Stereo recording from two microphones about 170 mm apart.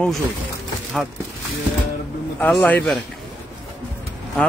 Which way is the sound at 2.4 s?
10° left (ahead or behind).